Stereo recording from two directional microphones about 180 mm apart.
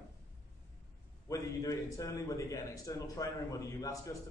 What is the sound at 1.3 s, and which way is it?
A man's voice, 20° left (ahead or behind).